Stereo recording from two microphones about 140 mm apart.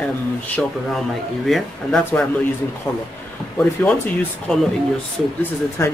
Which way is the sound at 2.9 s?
20° left (ahead or behind).